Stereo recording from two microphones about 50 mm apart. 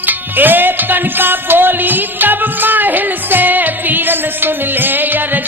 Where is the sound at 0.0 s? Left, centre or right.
Right.